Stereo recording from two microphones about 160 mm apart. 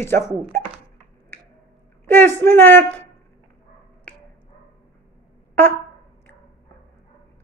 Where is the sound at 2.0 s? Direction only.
15° left (ahead or behind).